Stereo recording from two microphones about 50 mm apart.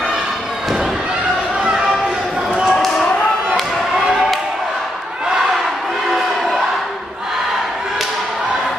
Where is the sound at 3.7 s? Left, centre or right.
Centre.